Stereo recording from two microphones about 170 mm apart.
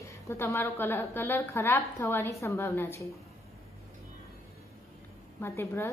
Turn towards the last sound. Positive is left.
turn(degrees=15)  # may be behind; listen again after turning